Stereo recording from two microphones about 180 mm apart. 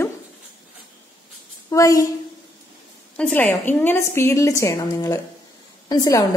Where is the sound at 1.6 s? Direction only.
20° left (ahead or behind).